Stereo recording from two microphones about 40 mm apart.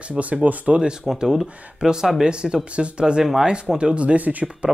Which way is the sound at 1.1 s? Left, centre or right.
Centre.